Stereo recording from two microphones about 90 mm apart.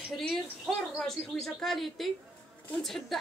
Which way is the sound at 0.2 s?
10° left (ahead or behind).